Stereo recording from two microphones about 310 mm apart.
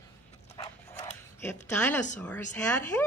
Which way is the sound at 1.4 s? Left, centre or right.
Centre.